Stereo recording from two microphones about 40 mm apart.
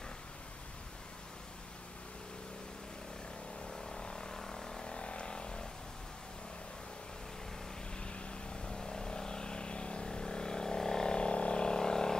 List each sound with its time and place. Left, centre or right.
3.7 s vehicle: centre
8.6 s vehicle: centre